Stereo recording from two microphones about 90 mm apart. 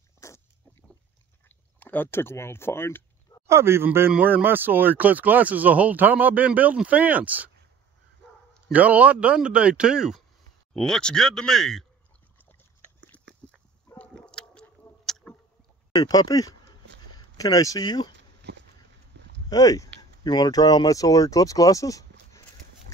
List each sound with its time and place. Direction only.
0.2 s dog: 35° left (ahead or behind)
1.8 s speech: 20° left (ahead or behind)
3.4 s a man's voice: 30° right (ahead or behind)
8.7 s speech: 15° right (ahead or behind)
10.7 s speech: 10° left (ahead or behind)
13.9 s a sound: 15° left (ahead or behind)
15.9 s speech: 45° left (ahead or behind)
19.5 s speech: 40° left (ahead or behind)